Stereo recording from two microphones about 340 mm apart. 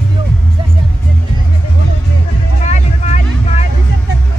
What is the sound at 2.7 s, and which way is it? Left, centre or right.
Vehicle, left.